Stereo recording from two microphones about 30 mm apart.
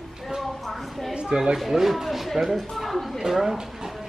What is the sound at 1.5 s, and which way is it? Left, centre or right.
A woman's voice, centre.